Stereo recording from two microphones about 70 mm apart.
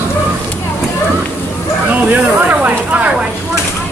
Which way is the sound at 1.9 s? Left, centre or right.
Right.